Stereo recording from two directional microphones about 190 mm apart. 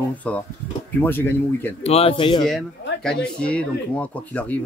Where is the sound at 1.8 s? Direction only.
30° left (ahead or behind).